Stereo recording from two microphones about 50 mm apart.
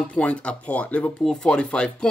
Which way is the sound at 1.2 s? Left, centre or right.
Centre.